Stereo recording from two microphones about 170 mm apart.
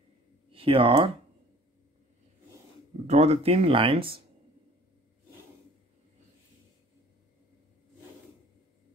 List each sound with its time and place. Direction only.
0.5 s speech: 35° right (ahead or behind)
3.1 s speech: 35° right (ahead or behind)